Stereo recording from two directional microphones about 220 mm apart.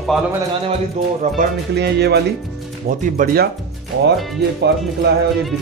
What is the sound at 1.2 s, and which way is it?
Speech, 30° right (ahead or behind).